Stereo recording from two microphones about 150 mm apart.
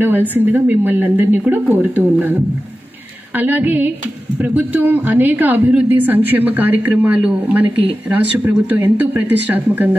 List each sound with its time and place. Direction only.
0.0 s a woman's voice: 15° right (ahead or behind)